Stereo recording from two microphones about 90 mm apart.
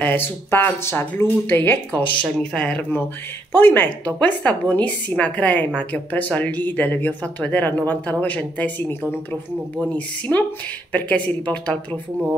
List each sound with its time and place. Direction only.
0.0 s speech: 20° left (ahead or behind)
9.9 s speech: 15° left (ahead or behind)